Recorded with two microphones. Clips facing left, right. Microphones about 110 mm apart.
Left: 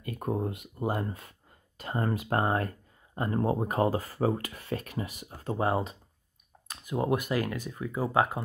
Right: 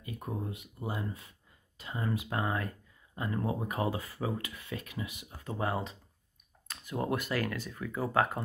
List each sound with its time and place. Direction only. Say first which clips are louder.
0.0 s speech: left 7 dB; 60° left (ahead or behind); by 5.9 s 30° left (ahead or behind)
6.7 s speech: left 5 dB; 15° left (ahead or behind)